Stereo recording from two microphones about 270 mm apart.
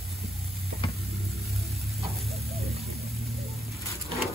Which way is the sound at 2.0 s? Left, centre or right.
Centre.